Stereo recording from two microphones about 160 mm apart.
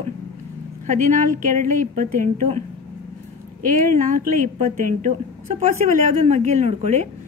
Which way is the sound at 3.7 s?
60° right (ahead or behind).